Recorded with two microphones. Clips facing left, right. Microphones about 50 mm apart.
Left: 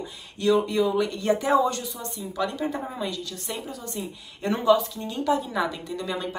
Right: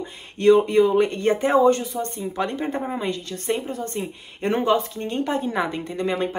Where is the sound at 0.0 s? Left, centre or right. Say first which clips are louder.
Right 7 dB; right.